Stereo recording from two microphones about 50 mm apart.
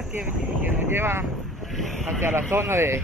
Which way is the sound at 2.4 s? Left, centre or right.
Right.